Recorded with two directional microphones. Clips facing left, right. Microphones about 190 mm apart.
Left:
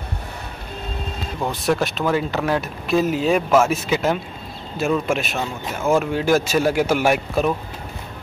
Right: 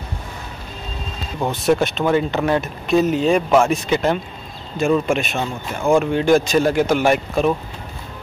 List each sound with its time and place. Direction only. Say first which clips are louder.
1.4 s speech: right 4 dB; centre (ahead or behind)